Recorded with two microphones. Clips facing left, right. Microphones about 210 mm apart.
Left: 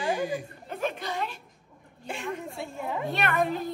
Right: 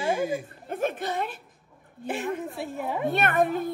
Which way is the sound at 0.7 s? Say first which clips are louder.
Right 3 dB; 50° right (ahead or behind).